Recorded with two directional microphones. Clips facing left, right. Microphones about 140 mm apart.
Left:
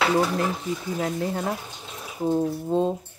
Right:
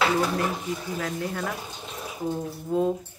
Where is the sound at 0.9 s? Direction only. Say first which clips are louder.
Left 3 dB; 30° left (ahead or behind).